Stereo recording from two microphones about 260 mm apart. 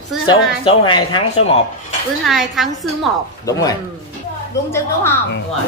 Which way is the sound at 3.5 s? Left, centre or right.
Centre.